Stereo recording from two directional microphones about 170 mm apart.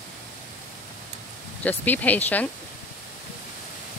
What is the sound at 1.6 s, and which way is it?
Speech, 10° left (ahead or behind).